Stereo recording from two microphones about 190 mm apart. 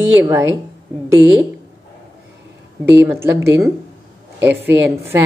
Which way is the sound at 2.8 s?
10° right (ahead or behind).